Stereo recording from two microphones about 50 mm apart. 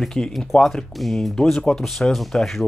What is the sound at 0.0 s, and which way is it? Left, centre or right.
Speech, centre.